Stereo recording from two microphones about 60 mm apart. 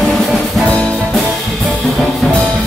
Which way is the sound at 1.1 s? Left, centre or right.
Centre.